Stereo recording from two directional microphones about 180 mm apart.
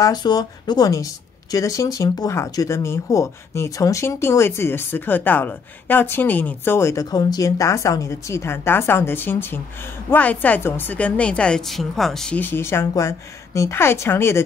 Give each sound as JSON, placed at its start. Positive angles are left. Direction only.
{"t": 0.0, "sound": "speech", "side_deg": 25}